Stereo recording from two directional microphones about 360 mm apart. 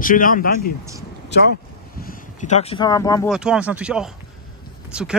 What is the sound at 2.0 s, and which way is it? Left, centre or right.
Speech, centre.